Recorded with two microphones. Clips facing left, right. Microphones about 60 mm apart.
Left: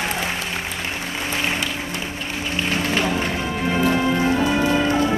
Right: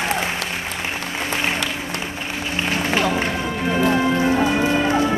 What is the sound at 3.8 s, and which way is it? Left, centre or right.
Music, centre.